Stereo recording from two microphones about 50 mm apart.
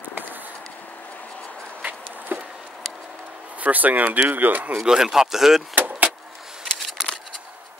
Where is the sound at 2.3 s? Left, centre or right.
Right.